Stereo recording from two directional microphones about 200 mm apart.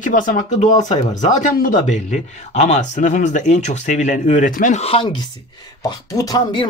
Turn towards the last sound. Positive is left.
turn(degrees=20)  # may be behind; listen again after turning